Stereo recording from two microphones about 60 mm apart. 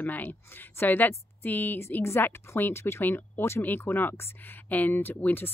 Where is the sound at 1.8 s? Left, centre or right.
Left.